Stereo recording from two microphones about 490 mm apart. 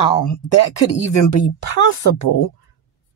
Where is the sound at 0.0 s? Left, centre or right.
Left.